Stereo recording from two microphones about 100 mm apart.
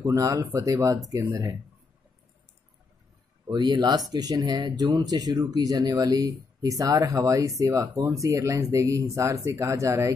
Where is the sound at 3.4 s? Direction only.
45° right (ahead or behind).